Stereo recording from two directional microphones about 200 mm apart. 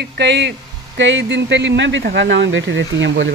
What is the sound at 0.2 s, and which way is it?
Speech, 60° right (ahead or behind).